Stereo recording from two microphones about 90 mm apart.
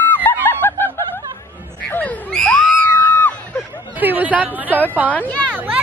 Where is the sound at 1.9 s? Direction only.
20° left (ahead or behind).